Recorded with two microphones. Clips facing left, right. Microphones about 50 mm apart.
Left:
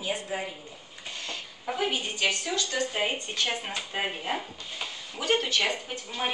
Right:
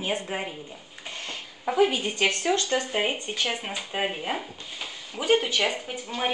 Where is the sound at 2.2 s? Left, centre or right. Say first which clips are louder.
Right 5 dB; right.